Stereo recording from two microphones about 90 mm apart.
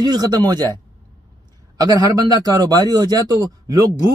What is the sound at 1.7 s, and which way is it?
A man's voice, 45° right (ahead or behind).